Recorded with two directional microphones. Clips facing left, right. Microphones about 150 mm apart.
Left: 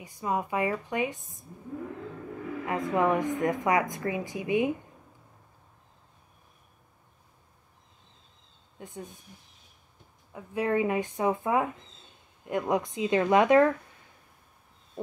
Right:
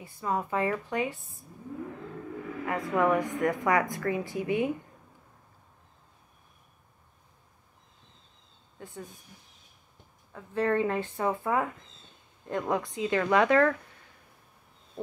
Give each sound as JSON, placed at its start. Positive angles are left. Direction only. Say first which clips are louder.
{"t": 0.0, "sound": "a woman's voice", "louder": "left 1 dB", "side_deg": 15}
{"t": 2.6, "sound": "a woman's voice", "louder": "even", "side_deg": 20}
{"t": 8.7, "sound": "speech", "louder": "left 1 dB", "side_deg": 20}
{"t": 10.3, "sound": "a woman's voice", "louder": "even", "side_deg": 10}